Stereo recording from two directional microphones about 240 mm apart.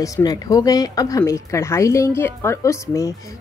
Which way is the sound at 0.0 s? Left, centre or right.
Centre.